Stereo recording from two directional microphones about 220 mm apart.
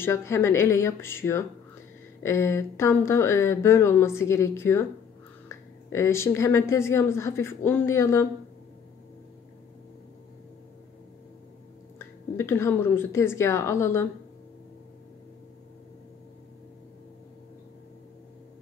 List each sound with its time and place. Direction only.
0.0 s speech: 10° left (ahead or behind)
12.4 s speech: 10° left (ahead or behind)